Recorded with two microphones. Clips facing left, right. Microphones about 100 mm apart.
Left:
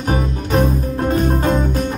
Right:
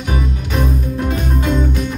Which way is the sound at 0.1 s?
40° left (ahead or behind).